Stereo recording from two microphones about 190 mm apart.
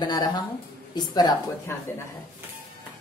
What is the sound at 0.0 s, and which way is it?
A woman's voice, 20° left (ahead or behind).